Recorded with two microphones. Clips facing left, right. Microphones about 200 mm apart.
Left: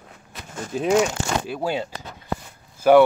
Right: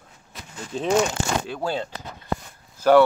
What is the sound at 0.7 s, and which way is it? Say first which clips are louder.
Speech: left 2 dB; 5° left (ahead or behind).